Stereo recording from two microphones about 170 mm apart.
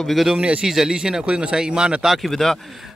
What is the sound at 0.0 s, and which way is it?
A man's voice, centre (ahead or behind).